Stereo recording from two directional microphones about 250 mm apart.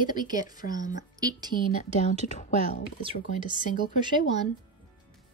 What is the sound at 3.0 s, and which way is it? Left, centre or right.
Speech, centre.